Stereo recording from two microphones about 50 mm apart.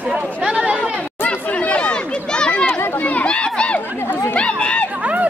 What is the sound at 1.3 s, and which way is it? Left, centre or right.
Chatter, left.